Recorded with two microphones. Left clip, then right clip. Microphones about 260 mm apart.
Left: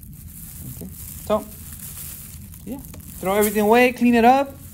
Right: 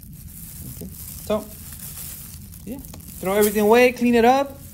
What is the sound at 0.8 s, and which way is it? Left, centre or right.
Sizzle, left.